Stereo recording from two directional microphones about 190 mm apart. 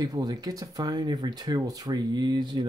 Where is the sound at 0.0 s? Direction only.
20° right (ahead or behind).